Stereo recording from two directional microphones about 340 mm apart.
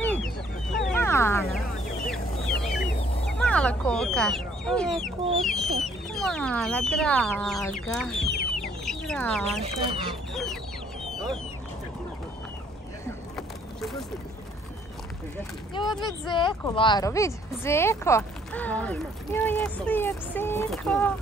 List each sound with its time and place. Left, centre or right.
0.0 s a sound: centre
2.0 s fowl: centre
3.3 s speech: centre
8.5 s chicken: centre
9.6 s speech: centre
10.3 s chicken: centre
11.1 s duck: centre
13.0 s vehicle: centre
16.1 s a woman's voice: centre